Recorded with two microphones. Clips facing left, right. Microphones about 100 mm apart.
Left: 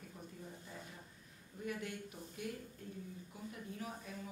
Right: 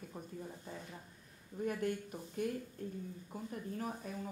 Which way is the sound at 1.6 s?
45° right (ahead or behind).